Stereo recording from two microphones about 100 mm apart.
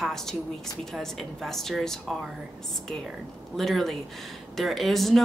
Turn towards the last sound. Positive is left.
turn(degrees=0)  # may be behind; listen again after turning